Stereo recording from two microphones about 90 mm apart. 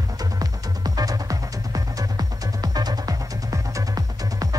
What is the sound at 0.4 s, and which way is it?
Music, 45° right (ahead or behind).